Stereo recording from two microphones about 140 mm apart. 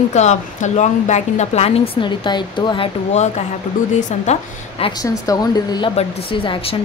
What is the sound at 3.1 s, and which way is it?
Speech, 55° left (ahead or behind).